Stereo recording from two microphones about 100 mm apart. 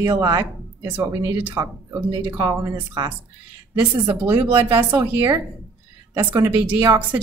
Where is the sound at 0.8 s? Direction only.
20° right (ahead or behind).